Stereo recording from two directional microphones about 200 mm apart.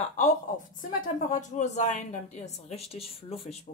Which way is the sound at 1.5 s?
35° left (ahead or behind).